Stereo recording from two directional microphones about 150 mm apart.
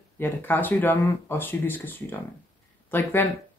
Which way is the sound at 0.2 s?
15° left (ahead or behind).